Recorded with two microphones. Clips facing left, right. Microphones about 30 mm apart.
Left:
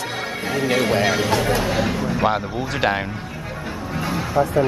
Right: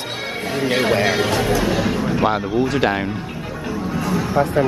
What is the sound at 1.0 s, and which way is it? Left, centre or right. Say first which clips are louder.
Speech: right 1 dB; centre.